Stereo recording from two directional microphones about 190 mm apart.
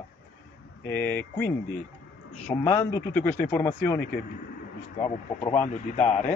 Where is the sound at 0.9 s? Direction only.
10° left (ahead or behind).